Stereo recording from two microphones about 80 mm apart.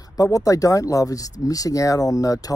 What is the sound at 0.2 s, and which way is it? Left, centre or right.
Speech, left.